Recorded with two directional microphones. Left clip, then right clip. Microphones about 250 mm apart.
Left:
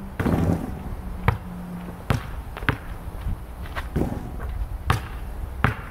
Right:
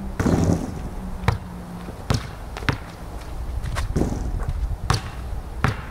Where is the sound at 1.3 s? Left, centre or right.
Centre.